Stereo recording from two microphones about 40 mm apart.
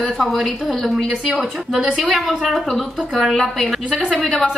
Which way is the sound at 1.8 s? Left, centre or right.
Centre.